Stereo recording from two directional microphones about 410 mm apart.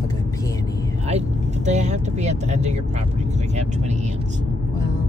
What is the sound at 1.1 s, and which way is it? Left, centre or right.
Vehicle, centre.